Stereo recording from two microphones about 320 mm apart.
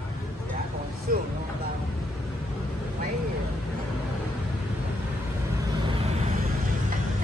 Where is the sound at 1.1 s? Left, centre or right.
Right.